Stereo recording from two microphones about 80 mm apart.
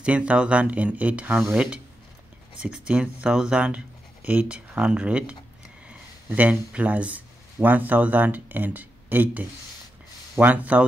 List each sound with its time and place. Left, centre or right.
0.0 s speech: centre